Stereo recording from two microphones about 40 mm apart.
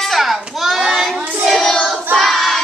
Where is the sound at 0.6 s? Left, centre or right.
Centre.